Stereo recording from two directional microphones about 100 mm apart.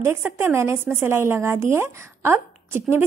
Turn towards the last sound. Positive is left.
turn(degrees=-25)  # may be behind; listen again after turning